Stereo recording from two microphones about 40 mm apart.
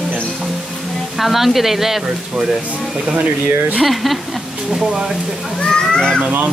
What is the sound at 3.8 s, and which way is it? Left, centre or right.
Speech, centre.